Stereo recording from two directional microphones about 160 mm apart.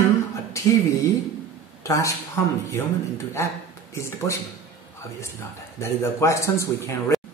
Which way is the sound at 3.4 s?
15° left (ahead or behind).